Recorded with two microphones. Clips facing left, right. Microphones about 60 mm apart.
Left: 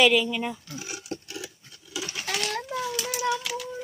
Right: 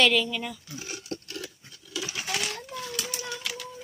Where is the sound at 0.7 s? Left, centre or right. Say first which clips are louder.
Left 1 dB; centre.